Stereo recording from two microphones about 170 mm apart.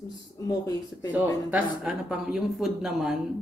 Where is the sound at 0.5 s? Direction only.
25° left (ahead or behind).